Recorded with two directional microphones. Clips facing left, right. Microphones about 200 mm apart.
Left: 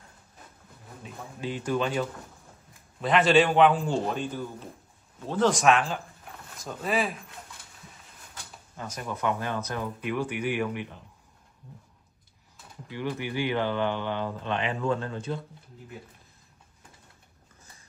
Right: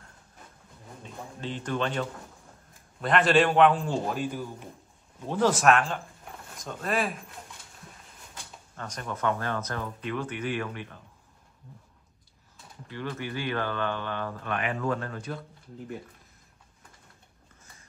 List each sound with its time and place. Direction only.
1.0 s a man's voice: 10° left (ahead or behind)
8.7 s speech: 5° left (ahead or behind)
12.9 s speech: 15° left (ahead or behind)